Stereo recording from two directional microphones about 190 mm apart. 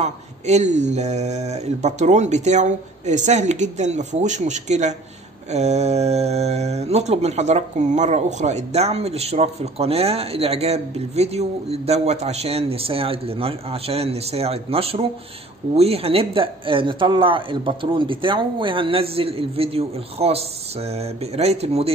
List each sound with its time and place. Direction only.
0.0 s speech: 35° right (ahead or behind)